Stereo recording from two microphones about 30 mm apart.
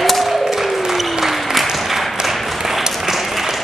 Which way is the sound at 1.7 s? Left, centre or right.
Centre.